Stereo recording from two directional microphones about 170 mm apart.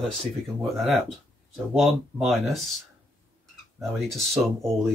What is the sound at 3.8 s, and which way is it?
Speech, centre (ahead or behind).